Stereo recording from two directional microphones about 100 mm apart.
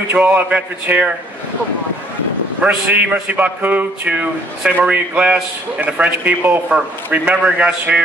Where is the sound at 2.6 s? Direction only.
15° right (ahead or behind).